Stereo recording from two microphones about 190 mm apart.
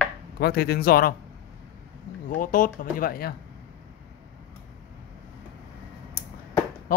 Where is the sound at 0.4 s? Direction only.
55° left (ahead or behind).